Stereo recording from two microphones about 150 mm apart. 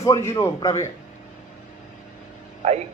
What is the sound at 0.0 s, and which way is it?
Speech, 20° left (ahead or behind).